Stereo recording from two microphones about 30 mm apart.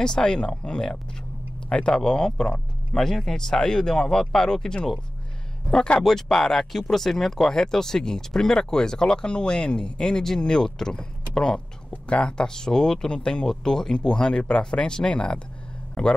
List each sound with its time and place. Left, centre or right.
0.0 s speech: left
4.1 s speech: centre
6.0 s speech: centre
12.1 s speech: left
12.4 s speech: left
13.5 s speech: centre; by 16.1 s left